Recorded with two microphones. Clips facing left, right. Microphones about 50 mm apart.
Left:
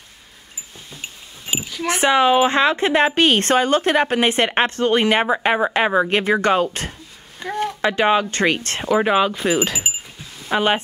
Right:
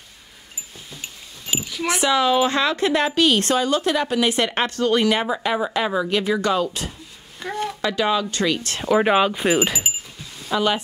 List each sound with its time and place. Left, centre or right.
1.5 s a sound: centre
1.9 s a woman's voice: left
7.3 s a sound: centre
7.8 s a woman's voice: left
8.8 s speech: centre
10.5 s a woman's voice: left